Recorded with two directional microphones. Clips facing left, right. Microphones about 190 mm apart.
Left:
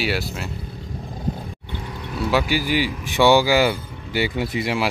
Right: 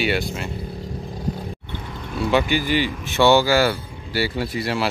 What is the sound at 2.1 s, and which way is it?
Speech, 5° left (ahead or behind).